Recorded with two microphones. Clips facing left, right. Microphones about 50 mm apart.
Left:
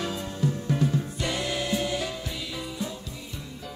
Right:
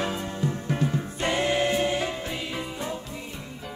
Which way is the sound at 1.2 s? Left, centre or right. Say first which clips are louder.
Right 10 dB; right.